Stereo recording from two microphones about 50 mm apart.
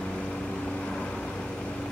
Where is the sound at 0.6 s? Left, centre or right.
Left.